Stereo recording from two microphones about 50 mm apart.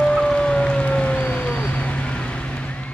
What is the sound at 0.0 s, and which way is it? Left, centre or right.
Music, centre.